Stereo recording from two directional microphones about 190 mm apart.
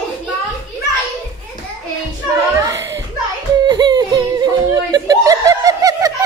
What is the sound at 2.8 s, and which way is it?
Children playing, 65° right (ahead or behind).